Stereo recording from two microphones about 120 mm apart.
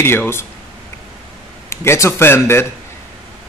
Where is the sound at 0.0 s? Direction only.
20° left (ahead or behind).